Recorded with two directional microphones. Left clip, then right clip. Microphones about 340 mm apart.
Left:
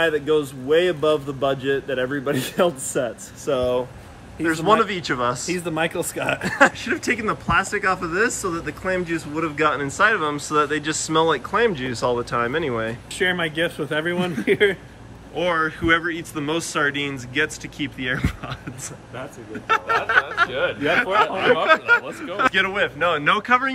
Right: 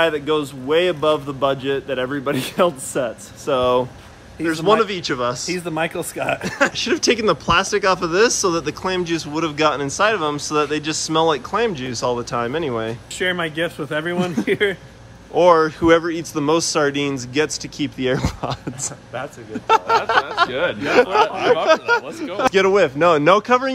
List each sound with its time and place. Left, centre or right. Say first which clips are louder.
0.0 s speech: right 1 dB; centre
19.7 s a sound: right 3 dB; centre
20.4 s speech: right 2 dB; right
20.9 s speech: right 4 dB; centre